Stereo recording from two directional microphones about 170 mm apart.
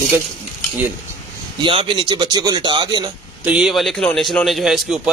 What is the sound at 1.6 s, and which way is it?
Speech, 30° right (ahead or behind).